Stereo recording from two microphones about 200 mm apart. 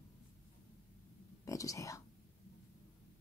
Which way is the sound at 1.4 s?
15° left (ahead or behind).